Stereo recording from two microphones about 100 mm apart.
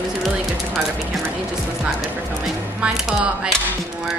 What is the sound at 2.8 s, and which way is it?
Speech, 10° right (ahead or behind).